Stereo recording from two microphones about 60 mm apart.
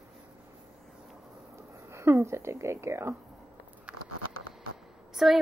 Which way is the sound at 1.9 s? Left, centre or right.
Right.